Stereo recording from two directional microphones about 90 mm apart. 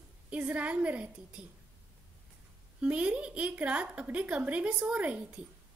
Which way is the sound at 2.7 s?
15° right (ahead or behind).